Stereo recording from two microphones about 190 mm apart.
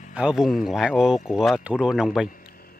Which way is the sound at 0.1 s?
5° right (ahead or behind).